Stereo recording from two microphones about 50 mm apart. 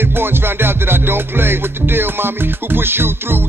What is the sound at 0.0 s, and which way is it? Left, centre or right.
Music, right.